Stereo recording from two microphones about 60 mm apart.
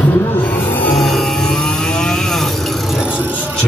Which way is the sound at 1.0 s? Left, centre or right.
Centre.